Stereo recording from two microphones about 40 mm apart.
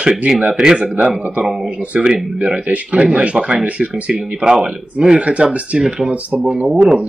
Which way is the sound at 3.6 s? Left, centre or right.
Right.